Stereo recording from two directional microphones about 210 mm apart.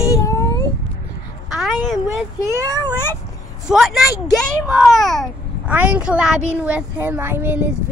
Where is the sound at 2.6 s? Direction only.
20° right (ahead or behind).